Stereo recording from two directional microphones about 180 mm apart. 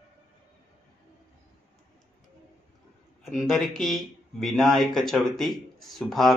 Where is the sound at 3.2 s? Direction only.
Centre (ahead or behind).